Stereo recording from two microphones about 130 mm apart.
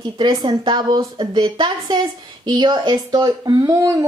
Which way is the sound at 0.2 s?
35° right (ahead or behind).